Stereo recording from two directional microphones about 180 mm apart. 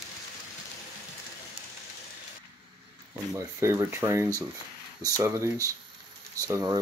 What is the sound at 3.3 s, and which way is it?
Speech, 15° right (ahead or behind).